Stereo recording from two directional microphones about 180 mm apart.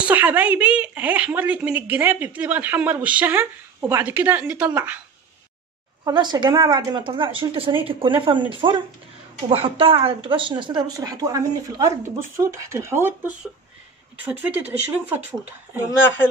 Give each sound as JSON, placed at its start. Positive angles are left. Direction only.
{"t": 0.0, "sound": "a woman's voice", "side_deg": -10}
{"t": 6.0, "sound": "a woman's voice", "side_deg": -20}